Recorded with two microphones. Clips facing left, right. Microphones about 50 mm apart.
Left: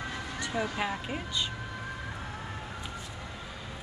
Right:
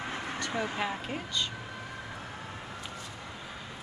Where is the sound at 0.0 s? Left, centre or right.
Right.